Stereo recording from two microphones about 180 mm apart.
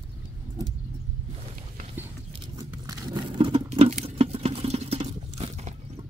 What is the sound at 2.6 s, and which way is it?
Patter, 20° right (ahead or behind).